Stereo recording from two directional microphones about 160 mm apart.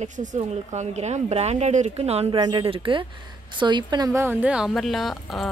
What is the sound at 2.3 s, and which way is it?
A woman's voice, 30° right (ahead or behind).